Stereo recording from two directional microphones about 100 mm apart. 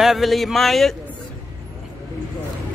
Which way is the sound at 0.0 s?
Centre (ahead or behind).